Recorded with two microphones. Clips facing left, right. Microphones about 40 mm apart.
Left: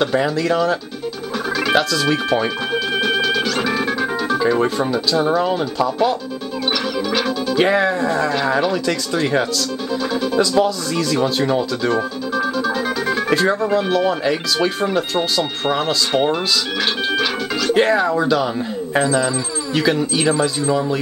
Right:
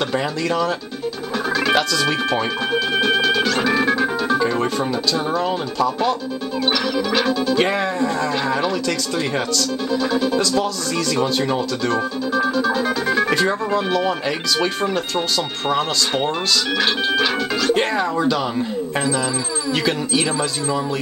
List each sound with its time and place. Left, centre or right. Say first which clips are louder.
0.0 s speech: left 4 dB; centre